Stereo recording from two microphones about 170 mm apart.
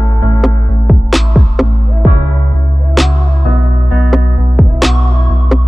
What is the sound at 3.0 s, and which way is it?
Music, centre (ahead or behind).